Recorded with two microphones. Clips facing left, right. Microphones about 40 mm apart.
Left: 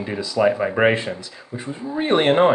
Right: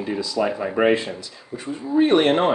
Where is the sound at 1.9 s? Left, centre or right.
Left.